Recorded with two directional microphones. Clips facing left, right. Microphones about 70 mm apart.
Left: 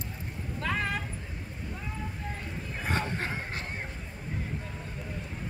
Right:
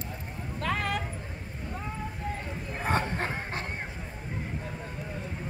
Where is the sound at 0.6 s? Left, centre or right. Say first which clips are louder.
Right 1 dB; right.